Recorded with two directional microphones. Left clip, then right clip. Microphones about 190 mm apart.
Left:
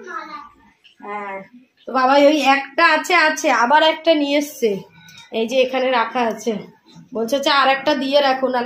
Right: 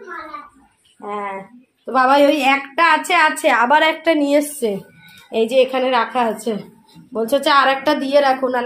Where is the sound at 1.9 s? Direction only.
25° right (ahead or behind).